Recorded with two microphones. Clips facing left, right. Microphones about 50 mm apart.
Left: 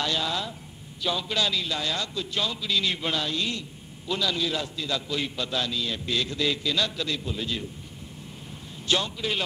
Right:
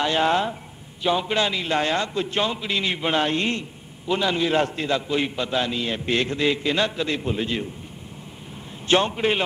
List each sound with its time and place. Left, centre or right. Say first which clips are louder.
0.0 s a man's voice: right 8 dB; right
3.2 s a man's voice: right 7 dB; right
4.6 s a man's voice: right 9 dB; right
4.9 s a man's voice: right 5 dB; right
8.8 s a man's voice: right 7 dB; right